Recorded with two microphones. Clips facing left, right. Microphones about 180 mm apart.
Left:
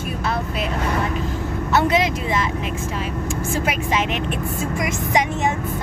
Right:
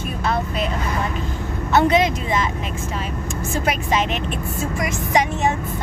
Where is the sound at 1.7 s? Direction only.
5° left (ahead or behind).